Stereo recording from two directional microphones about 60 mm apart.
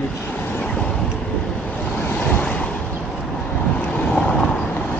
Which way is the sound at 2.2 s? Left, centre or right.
Left.